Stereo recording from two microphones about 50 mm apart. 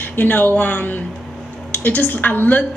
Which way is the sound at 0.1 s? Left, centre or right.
Left.